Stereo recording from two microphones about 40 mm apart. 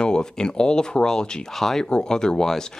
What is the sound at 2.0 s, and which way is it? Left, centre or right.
Speech, centre.